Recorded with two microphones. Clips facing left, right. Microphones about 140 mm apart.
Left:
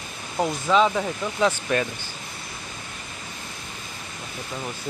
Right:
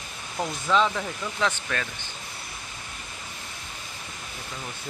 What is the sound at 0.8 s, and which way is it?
Speech, 20° left (ahead or behind).